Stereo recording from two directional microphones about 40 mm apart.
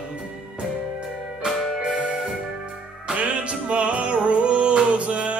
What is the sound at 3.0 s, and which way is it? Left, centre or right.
Music, right.